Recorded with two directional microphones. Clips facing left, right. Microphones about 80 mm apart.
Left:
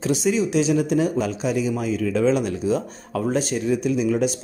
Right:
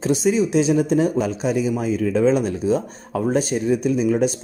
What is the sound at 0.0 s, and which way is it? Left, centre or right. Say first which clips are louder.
Speech: right 2 dB; right.